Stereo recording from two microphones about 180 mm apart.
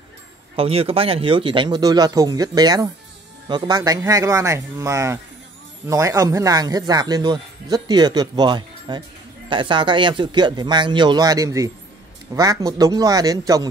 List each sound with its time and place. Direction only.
0.6 s speech: 30° right (ahead or behind)